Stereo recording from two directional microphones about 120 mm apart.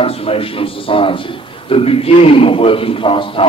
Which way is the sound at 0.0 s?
55° left (ahead or behind).